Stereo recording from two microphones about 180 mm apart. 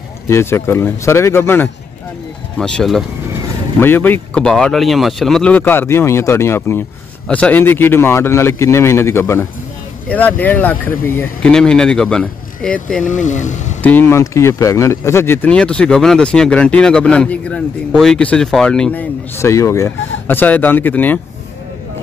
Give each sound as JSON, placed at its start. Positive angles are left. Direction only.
{"t": 0.3, "sound": "speech", "side_deg": 15}
{"t": 13.0, "sound": "speech", "side_deg": 45}
{"t": 13.8, "sound": "speech", "side_deg": 10}